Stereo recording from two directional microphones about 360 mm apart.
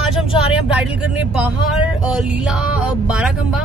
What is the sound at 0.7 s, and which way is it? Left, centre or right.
Speech, centre.